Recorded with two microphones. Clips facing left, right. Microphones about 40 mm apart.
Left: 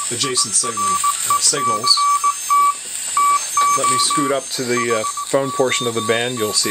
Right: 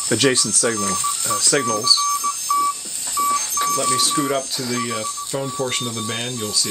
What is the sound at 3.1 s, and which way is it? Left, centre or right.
Telephone dialing, left.